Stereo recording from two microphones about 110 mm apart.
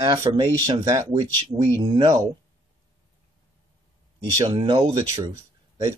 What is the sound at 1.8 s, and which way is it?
Speech, 45° right (ahead or behind).